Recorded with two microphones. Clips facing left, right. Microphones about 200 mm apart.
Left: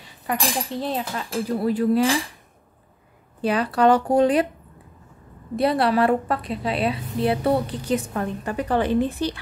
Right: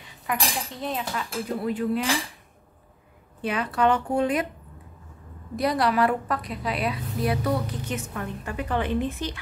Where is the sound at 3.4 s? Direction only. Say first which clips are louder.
Left 5 dB; 35° left (ahead or behind).